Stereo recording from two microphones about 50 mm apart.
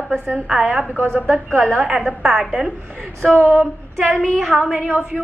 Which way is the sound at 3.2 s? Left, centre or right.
Right.